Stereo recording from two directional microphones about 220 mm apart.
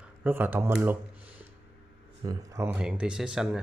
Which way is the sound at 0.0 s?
5° right (ahead or behind).